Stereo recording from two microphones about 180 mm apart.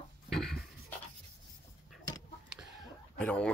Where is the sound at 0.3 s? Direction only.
Centre (ahead or behind).